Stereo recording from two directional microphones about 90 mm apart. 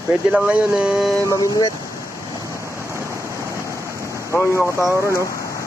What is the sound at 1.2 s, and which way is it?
Speech, 45° left (ahead or behind).